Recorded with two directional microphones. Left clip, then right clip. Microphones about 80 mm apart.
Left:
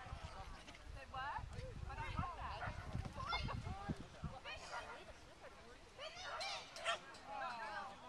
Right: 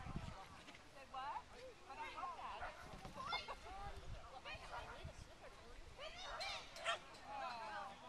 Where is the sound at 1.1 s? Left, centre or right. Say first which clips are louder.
Left 2 dB; right.